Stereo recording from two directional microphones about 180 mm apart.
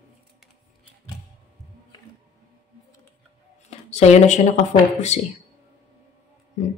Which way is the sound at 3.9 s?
40° left (ahead or behind).